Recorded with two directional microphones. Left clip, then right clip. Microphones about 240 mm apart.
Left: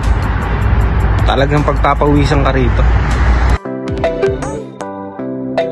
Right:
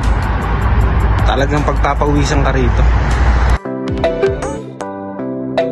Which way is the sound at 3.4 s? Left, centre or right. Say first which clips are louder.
Even; centre.